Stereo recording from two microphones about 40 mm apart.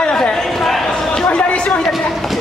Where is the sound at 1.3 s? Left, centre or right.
Left.